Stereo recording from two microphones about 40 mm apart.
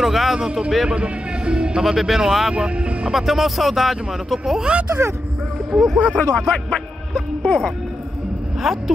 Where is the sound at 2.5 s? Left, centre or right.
Right.